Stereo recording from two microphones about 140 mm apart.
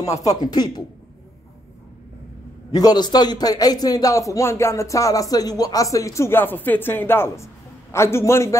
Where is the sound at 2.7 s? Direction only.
30° left (ahead or behind).